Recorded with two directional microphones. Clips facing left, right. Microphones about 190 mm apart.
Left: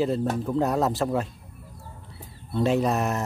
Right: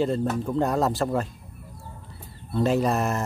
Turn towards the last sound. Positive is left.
turn(degrees=0)  # may be behind; listen again after turning